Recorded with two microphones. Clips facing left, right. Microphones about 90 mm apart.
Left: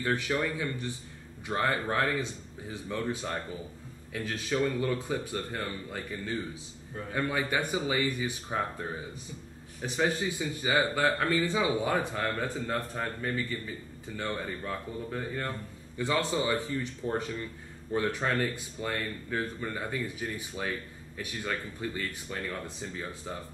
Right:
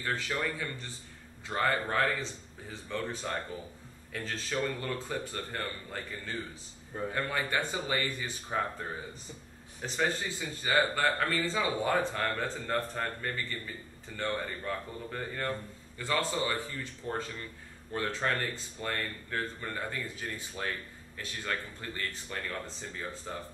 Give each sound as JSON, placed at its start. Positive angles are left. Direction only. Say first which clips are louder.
{"t": 0.0, "sound": "speech", "louder": "left 4 dB", "side_deg": 15}
{"t": 9.8, "sound": "speech", "louder": "left 3 dB", "side_deg": 10}
{"t": 16.0, "sound": "speech", "louder": "left 2 dB", "side_deg": 20}